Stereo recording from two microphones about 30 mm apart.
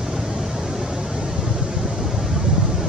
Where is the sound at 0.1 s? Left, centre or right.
Centre.